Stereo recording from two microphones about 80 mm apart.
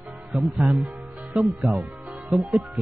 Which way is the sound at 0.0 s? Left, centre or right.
Centre.